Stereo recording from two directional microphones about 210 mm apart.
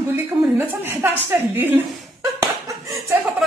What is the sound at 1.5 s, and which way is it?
Speech, 10° right (ahead or behind).